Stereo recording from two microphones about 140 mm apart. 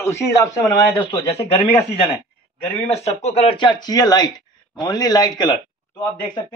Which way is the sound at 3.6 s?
30° left (ahead or behind).